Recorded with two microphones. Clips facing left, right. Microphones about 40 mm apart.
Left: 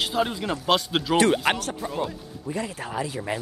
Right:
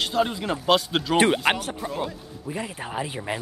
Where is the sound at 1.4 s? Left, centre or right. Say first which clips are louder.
Right 1 dB; centre.